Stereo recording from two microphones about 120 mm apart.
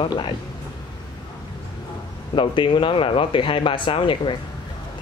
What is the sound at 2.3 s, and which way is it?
Speech, 45° left (ahead or behind).